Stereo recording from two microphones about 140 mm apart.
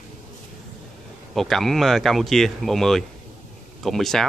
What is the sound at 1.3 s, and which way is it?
Speech, centre (ahead or behind).